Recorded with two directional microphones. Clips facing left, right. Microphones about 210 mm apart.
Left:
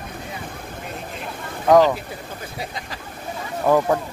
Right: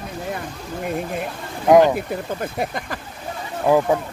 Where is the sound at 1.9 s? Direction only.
55° right (ahead or behind).